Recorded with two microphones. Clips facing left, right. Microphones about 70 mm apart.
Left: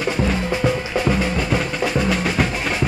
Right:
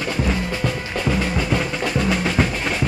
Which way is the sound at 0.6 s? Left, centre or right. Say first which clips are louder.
Left 5 dB; centre.